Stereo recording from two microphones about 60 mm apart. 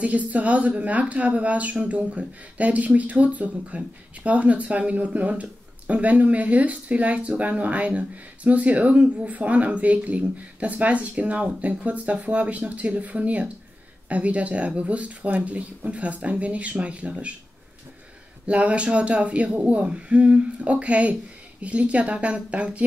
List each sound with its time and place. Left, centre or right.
0.0 s speech: right
18.5 s speech: right